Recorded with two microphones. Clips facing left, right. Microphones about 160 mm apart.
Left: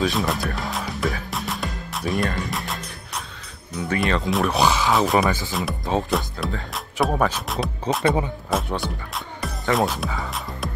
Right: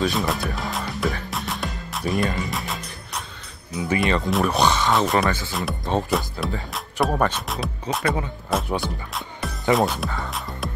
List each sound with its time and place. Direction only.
0.0 s music: centre (ahead or behind)
3.7 s speech: centre (ahead or behind)
8.0 s speech: 20° left (ahead or behind)
8.5 s speech: centre (ahead or behind)